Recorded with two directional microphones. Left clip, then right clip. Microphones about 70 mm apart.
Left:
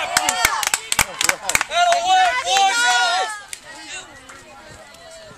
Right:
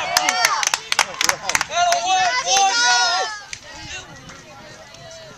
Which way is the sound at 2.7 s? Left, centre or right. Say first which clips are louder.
Even; right.